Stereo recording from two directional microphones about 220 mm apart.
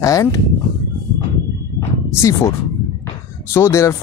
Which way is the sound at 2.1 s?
10° left (ahead or behind).